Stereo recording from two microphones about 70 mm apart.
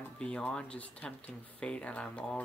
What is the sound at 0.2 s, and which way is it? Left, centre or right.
Speech, centre.